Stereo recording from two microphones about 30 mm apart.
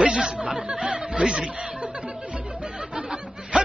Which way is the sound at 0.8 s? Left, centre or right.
Right.